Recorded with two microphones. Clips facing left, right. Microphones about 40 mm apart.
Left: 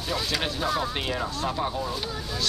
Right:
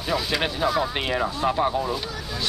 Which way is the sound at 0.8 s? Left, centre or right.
Right.